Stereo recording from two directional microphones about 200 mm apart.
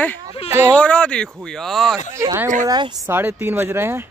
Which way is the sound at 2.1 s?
15° right (ahead or behind).